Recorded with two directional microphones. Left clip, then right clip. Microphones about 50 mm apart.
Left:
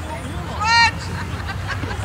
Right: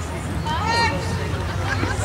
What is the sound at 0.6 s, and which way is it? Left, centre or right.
Vehicle, left.